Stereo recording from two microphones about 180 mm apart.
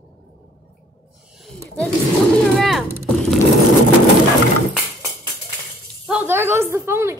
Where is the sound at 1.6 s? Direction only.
5° left (ahead or behind).